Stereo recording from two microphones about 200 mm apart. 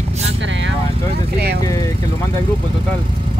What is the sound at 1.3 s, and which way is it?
Speech, 55° right (ahead or behind).